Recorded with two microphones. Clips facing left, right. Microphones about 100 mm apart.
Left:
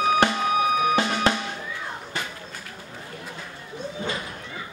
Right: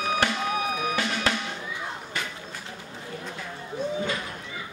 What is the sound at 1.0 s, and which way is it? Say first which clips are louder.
Drum: left 4 dB; 30° left (ahead or behind).